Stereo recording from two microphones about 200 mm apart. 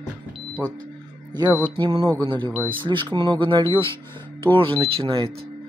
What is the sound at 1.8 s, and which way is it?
Speech, 20° right (ahead or behind).